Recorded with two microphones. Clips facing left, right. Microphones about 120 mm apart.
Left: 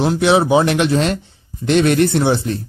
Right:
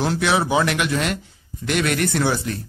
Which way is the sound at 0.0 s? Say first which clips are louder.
Left 6 dB; 20° left (ahead or behind).